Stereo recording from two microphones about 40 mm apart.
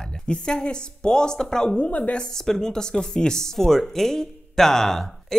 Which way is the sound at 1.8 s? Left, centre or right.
Left.